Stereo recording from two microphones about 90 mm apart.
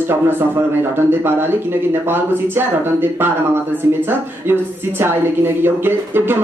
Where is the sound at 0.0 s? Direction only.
25° right (ahead or behind).